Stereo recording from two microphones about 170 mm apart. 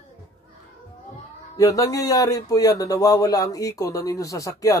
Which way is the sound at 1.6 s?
20° left (ahead or behind).